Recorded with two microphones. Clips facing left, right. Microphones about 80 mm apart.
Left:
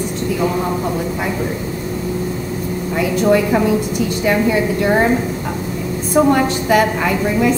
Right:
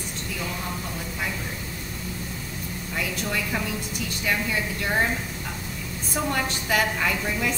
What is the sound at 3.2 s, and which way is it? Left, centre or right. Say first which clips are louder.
A woman's voice: left 19 dB; left.